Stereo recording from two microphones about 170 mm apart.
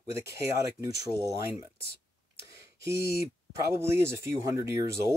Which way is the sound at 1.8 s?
65° left (ahead or behind).